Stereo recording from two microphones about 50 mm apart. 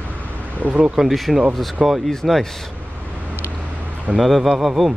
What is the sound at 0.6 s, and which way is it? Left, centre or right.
Speech, right.